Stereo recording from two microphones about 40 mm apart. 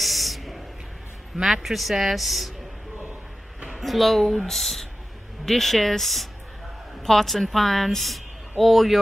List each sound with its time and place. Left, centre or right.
0.0 s a sound: centre
1.3 s a man's voice: centre
3.7 s a man's voice: centre